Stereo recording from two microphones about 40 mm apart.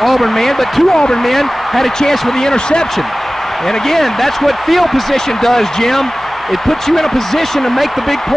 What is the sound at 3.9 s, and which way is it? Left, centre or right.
Speech, centre.